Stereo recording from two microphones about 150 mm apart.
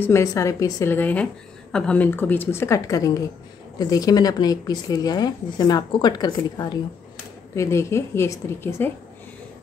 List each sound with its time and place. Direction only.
0.0 s a woman's voice: 20° left (ahead or behind)